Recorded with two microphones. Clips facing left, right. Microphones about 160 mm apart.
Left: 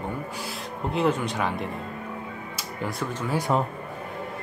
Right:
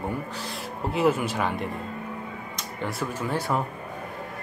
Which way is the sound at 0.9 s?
5° right (ahead or behind).